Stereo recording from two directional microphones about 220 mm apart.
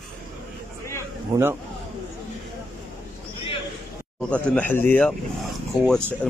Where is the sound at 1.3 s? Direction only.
10° right (ahead or behind).